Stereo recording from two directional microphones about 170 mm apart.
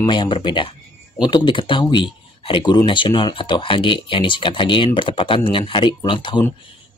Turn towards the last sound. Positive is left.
turn(degrees=30)  # may be behind; listen again after turning